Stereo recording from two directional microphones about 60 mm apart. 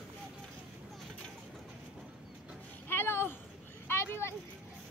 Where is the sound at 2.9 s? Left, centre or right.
Left.